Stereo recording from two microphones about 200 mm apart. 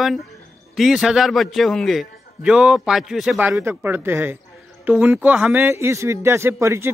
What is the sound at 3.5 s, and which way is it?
A man's voice, 10° right (ahead or behind).